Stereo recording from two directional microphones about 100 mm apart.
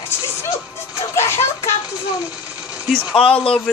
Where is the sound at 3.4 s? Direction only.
Centre (ahead or behind).